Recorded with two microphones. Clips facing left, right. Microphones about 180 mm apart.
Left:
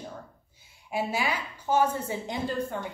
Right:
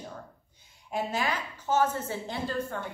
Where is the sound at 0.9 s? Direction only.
10° left (ahead or behind).